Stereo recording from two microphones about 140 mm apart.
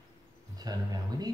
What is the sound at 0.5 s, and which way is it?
Speech, 30° right (ahead or behind).